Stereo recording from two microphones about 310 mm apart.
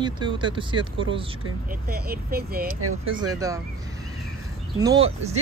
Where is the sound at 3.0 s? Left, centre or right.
Centre.